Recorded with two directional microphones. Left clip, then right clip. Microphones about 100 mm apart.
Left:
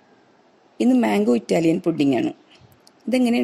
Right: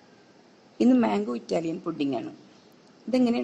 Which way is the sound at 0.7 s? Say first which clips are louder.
Left 4 dB; 30° left (ahead or behind).